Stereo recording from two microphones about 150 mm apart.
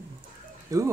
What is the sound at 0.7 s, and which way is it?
Speech, 25° right (ahead or behind).